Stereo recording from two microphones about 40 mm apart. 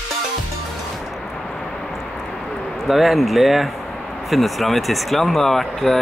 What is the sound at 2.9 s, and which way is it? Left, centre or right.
Speech, centre.